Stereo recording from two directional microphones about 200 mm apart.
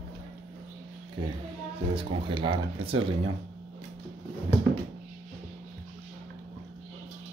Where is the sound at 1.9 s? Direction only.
25° right (ahead or behind).